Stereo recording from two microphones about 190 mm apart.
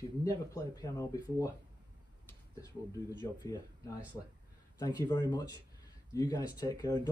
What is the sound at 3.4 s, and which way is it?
Speech, 20° left (ahead or behind).